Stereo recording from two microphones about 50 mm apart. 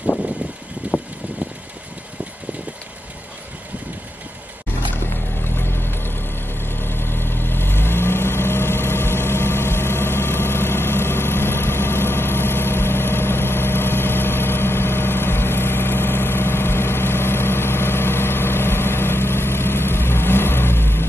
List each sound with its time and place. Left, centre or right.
0.8 s vehicle: right
4.9 s vehicle: left